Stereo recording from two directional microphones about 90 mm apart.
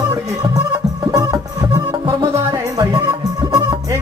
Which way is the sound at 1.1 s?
45° right (ahead or behind).